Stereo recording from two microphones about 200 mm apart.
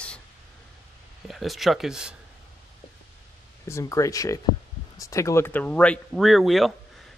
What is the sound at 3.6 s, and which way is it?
Speech, 15° left (ahead or behind).